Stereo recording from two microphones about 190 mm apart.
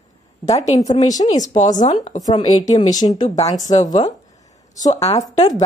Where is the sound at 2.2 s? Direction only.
20° left (ahead or behind).